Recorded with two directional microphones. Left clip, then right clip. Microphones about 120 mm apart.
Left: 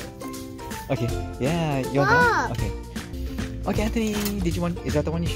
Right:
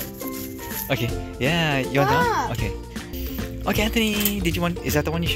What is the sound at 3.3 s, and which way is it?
Music, 5° left (ahead or behind).